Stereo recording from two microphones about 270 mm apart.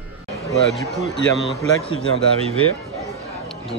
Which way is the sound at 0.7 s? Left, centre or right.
Centre.